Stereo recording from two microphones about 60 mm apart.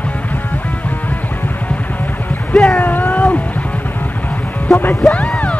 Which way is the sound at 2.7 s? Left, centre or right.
Left.